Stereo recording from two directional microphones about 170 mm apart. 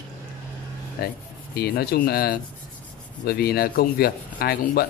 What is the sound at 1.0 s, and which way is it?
Speech, 60° left (ahead or behind).